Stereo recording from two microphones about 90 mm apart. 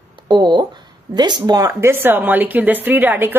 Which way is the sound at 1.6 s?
30° right (ahead or behind).